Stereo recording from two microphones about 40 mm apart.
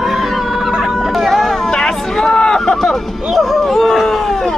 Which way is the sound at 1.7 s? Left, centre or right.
Centre.